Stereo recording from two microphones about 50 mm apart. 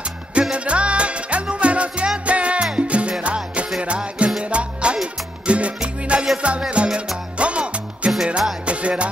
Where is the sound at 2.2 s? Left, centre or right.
Right.